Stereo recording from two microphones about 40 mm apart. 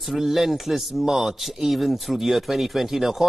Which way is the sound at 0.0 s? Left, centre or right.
Centre.